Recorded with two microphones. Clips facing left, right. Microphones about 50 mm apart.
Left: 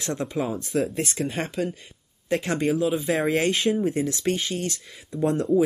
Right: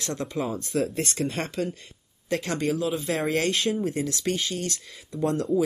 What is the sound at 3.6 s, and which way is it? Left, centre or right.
Speech, left.